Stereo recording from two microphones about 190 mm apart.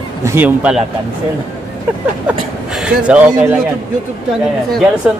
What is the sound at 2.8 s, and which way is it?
Speech, 5° right (ahead or behind).